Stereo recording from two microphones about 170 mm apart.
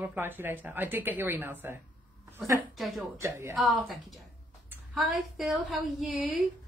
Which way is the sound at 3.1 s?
15° right (ahead or behind).